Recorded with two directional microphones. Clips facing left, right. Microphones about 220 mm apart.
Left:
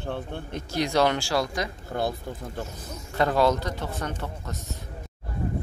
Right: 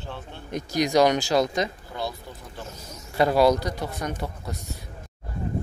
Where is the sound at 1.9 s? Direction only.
50° left (ahead or behind).